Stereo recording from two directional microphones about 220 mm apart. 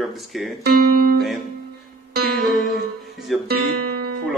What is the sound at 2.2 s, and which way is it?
Music, 45° right (ahead or behind).